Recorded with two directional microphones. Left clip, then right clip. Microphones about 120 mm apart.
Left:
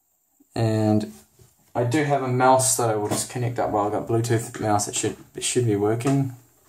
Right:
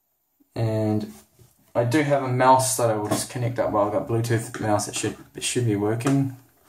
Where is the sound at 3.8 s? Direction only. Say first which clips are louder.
Even; 25° left (ahead or behind).